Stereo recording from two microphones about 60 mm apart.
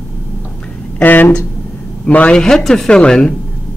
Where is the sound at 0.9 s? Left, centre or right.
Left.